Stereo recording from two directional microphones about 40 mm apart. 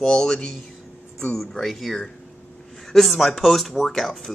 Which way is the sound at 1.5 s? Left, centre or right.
Centre.